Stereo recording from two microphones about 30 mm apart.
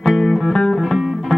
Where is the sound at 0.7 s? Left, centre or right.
Centre.